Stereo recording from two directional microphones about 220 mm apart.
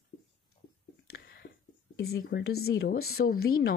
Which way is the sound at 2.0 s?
45° left (ahead or behind).